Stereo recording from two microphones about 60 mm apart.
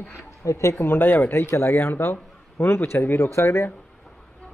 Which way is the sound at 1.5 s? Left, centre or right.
Left.